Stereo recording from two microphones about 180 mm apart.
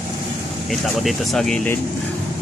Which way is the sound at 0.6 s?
Centre (ahead or behind).